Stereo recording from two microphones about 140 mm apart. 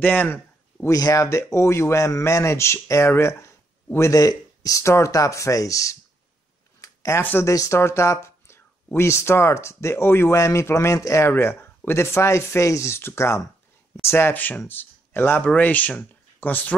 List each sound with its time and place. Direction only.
0.0 s speech: 10° left (ahead or behind)
0.9 s speech: 25° left (ahead or behind)